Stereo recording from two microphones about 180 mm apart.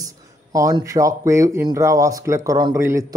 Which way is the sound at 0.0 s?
20° right (ahead or behind).